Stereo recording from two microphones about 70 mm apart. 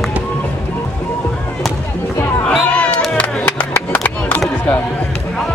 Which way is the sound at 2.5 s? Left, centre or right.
Centre.